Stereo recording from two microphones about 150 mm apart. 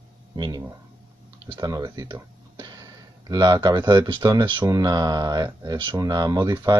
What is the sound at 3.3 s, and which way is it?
Speech, 25° right (ahead or behind).